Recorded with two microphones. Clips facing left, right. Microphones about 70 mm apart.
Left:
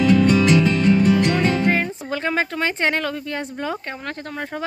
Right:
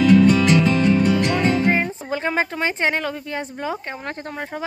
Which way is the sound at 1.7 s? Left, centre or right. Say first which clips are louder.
Even; centre.